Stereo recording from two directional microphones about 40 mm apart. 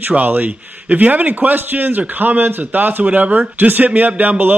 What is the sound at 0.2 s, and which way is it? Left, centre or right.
A man's voice, right.